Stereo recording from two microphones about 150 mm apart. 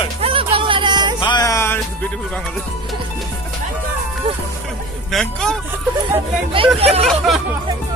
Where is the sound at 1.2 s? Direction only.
25° left (ahead or behind).